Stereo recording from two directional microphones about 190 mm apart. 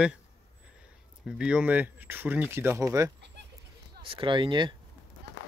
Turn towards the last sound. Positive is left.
turn(degrees=-25)  # may be behind; listen again after turning